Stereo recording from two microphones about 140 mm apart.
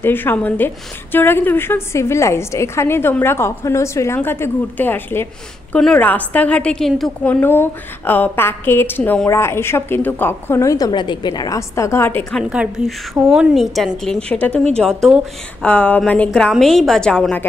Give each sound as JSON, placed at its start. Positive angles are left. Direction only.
{"t": 0.0, "sound": "a woman's voice", "side_deg": 15}
{"t": 10.9, "sound": "a woman's voice", "side_deg": 35}
{"t": 12.4, "sound": "a woman's voice", "side_deg": -5}